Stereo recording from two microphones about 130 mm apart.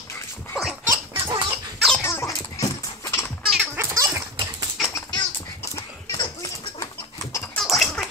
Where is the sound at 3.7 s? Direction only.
20° right (ahead or behind).